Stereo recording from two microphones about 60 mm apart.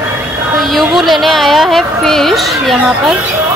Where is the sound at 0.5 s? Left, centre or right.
Centre.